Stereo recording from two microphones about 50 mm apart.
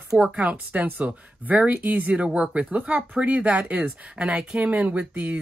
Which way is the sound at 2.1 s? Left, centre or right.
Right.